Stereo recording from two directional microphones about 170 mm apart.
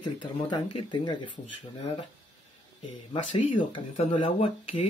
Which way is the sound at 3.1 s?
30° left (ahead or behind).